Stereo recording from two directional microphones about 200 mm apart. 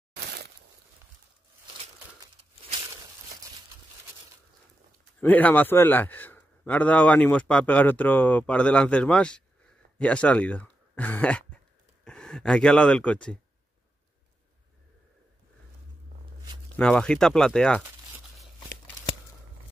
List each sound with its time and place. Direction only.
0.1 s a sound: 55° right (ahead or behind)
5.2 s a man's voice: 10° left (ahead or behind)
16.7 s speech: 5° left (ahead or behind)